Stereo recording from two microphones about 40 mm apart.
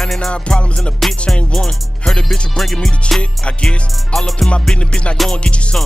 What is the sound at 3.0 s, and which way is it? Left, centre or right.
Music, left.